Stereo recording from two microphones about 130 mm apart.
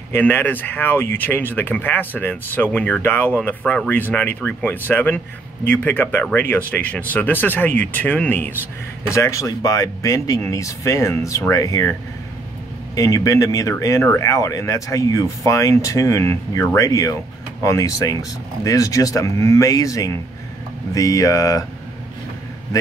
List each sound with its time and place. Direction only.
0.1 s speech: 15° left (ahead or behind)
9.1 s speech: 25° left (ahead or behind)
12.9 s speech: 25° left (ahead or behind)